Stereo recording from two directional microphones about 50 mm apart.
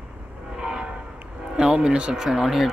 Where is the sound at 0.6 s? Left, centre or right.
Centre.